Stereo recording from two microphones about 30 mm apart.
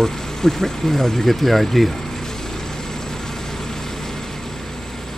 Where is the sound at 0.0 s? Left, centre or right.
Centre.